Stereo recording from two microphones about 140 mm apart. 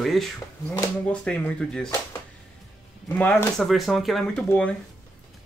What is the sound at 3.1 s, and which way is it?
Speech, 15° left (ahead or behind).